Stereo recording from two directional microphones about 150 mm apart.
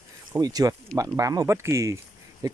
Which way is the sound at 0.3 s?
25° right (ahead or behind).